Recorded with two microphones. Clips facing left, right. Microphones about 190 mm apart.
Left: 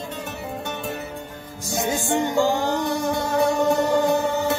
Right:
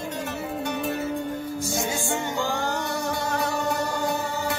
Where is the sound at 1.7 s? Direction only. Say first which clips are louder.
Left 8 dB; 20° left (ahead or behind).